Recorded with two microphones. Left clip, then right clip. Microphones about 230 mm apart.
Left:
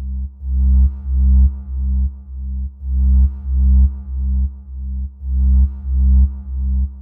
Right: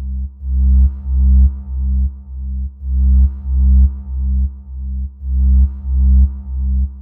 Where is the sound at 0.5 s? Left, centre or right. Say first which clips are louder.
Right 2 dB; centre.